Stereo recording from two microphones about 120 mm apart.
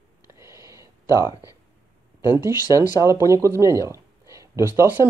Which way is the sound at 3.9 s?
25° right (ahead or behind).